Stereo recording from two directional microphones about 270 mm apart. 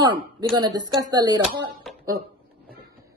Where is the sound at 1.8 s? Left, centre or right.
Centre.